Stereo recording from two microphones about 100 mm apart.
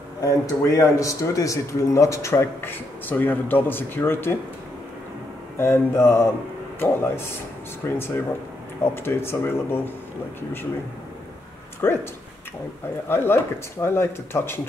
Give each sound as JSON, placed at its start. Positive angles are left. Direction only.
{"t": 0.2, "sound": "a man's voice", "side_deg": 30}
{"t": 5.6, "sound": "a man's voice", "side_deg": 25}
{"t": 11.8, "sound": "a man's voice", "side_deg": 25}
{"t": 13.1, "sound": "a man's voice", "side_deg": 25}